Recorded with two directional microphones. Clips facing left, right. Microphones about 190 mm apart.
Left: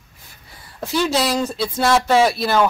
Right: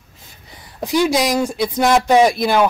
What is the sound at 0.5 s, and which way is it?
Speech, 15° right (ahead or behind).